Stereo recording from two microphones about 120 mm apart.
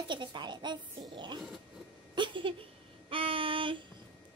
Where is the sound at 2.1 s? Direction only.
40° right (ahead or behind).